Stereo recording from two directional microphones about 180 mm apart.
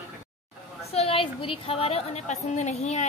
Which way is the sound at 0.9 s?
35° left (ahead or behind).